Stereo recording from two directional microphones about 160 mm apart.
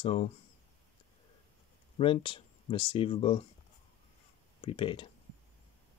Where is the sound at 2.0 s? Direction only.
35° left (ahead or behind).